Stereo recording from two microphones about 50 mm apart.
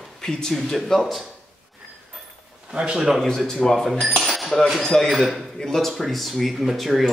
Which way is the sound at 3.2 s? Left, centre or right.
Centre.